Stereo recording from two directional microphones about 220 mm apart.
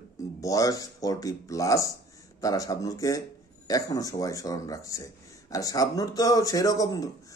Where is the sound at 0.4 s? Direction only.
15° left (ahead or behind).